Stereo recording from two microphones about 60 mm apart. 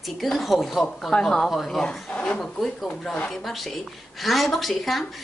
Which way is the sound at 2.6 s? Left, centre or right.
Centre.